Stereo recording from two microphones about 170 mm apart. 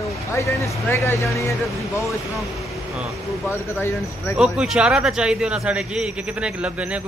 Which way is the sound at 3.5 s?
15° left (ahead or behind).